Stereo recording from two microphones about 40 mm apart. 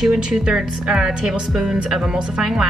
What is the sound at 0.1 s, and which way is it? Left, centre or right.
Speech, centre.